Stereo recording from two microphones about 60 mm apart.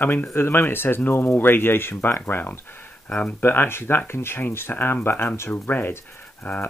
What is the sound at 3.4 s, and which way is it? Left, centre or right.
Speech, left.